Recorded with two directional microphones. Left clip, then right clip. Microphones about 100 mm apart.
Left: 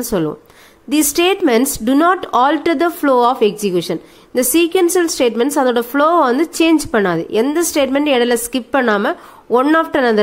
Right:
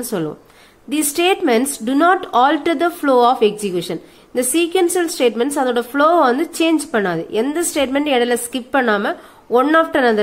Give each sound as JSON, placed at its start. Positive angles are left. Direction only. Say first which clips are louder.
{"t": 0.1, "sound": "speech", "louder": "left 6 dB", "side_deg": 35}